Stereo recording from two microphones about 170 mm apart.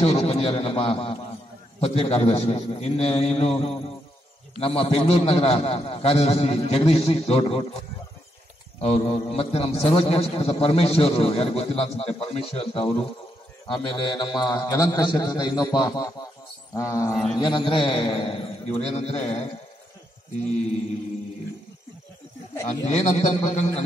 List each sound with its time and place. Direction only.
0.0 s a man's voice: 35° left (ahead or behind)
8.8 s a man's voice: 35° left (ahead or behind)
22.7 s a man's voice: 45° left (ahead or behind)